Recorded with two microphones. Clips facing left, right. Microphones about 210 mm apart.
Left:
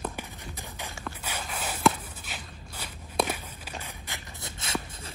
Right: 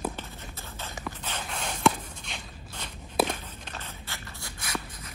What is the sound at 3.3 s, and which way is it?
Walk, 10° left (ahead or behind).